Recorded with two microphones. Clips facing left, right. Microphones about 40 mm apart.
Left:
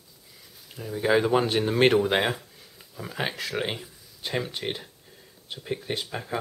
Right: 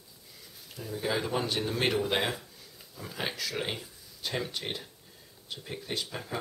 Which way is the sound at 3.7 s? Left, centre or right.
Centre.